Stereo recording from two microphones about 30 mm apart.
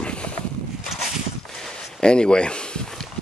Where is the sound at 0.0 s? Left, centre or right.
Left.